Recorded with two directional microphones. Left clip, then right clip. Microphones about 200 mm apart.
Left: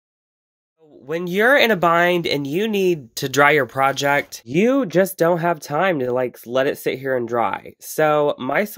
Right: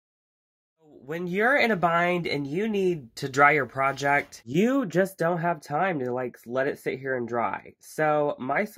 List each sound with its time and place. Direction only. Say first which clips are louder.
1.0 s speech: left 7 dB; 30° left (ahead or behind)
4.5 s speech: left 8 dB; 20° left (ahead or behind)
5.1 s speech: left 8 dB; 40° left (ahead or behind)